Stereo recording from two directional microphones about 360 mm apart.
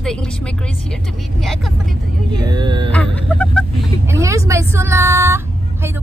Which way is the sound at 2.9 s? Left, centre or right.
Centre.